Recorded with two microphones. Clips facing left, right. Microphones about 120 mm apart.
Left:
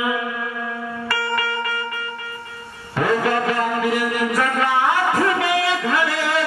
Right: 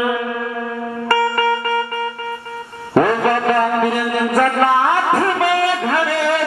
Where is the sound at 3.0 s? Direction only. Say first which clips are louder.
Right 5 dB; 45° right (ahead or behind).